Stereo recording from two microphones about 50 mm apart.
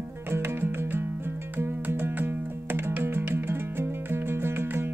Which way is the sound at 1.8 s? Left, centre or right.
Right.